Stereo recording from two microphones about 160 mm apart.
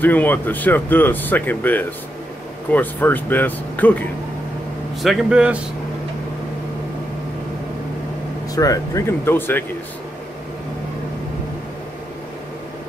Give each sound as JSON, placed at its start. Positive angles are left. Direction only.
{"t": 0.0, "sound": "speech", "side_deg": 10}
{"t": 5.0, "sound": "speech", "side_deg": -5}
{"t": 8.5, "sound": "speech", "side_deg": 20}